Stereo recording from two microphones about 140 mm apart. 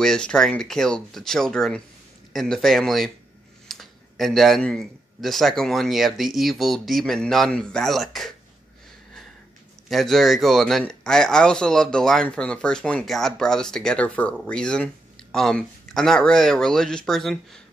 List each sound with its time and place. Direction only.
0.0 s a man's voice: 5° left (ahead or behind)
9.8 s a man's voice: centre (ahead or behind)